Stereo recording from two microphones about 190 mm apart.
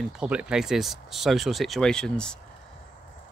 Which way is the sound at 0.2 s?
5° right (ahead or behind).